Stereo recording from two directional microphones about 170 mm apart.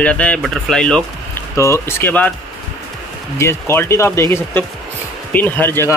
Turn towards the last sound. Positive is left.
turn(degrees=15)  # may be behind; listen again after turning